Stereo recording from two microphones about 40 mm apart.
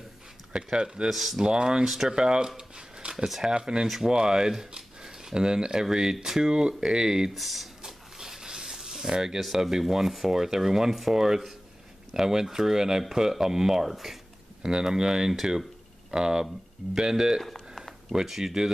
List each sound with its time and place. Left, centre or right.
0.5 s speech: right
1.0 s speech: centre
1.4 s speech: centre
3.8 s speech: centre
7.2 s speech: centre
7.8 s a sound: centre
9.4 s speech: centre
17.4 s a sound: centre
18.1 s speech: centre